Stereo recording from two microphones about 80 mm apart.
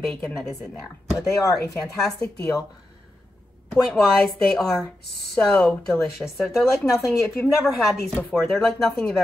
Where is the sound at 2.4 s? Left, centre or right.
Left.